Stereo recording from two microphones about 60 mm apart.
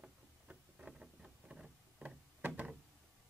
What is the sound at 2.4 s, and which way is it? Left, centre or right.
Door, right.